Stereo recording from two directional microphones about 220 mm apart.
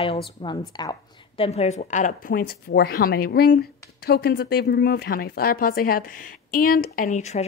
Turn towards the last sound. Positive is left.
turn(degrees=30)  # may be behind; listen again after turning